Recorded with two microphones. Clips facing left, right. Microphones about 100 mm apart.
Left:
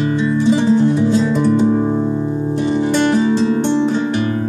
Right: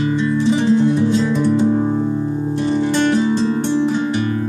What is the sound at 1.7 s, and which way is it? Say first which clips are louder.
Music: left 1 dB; 20° left (ahead or behind).